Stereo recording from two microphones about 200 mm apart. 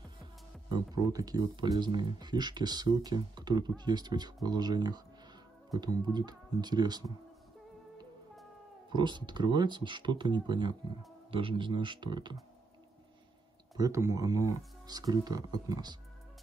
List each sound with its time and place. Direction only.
0.7 s speech: 20° right (ahead or behind)
8.9 s speech: 20° right (ahead or behind)
13.7 s speech: 15° right (ahead or behind)